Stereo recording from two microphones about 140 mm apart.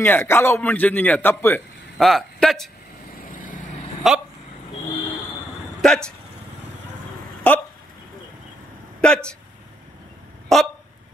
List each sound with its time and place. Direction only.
0.0 s a man's voice: 15° left (ahead or behind)
2.0 s speech: centre (ahead or behind)
3.2 s vehicle: 75° left (ahead or behind)
4.0 s speech: centre (ahead or behind)
5.8 s speech: 5° left (ahead or behind)
7.5 s hiccup: 10° left (ahead or behind)
9.0 s speech: 5° left (ahead or behind)
10.5 s speech: centre (ahead or behind)